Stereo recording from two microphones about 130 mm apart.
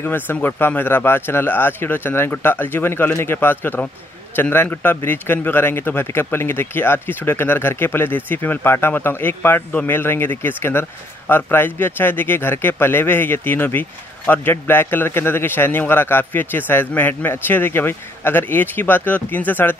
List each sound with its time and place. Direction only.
0.0 s a man's voice: 15° left (ahead or behind)